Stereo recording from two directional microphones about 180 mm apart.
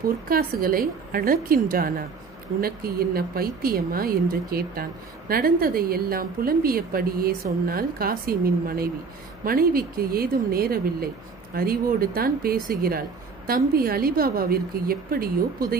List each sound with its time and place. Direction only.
0.3 s a woman's voice: 55° right (ahead or behind)